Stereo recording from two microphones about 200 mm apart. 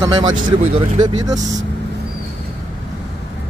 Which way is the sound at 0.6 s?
35° right (ahead or behind).